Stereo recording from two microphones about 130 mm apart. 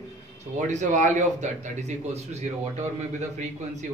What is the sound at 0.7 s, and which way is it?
A man's voice, 70° right (ahead or behind).